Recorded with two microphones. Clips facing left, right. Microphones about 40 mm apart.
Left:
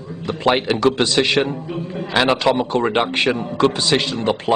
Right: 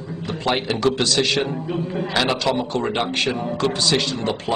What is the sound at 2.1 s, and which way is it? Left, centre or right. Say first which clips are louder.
A man's voice: left 5 dB; left.